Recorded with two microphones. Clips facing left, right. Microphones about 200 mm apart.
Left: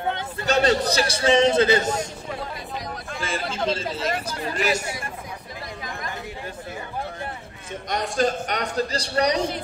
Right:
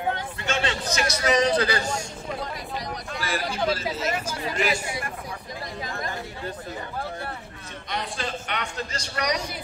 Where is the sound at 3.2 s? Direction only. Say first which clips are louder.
Left 1 dB; 25° left (ahead or behind).